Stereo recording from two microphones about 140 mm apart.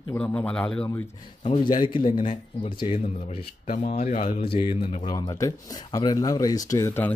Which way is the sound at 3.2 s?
60° left (ahead or behind).